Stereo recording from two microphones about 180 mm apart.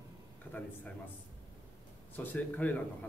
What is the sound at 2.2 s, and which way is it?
Speech, 10° left (ahead or behind).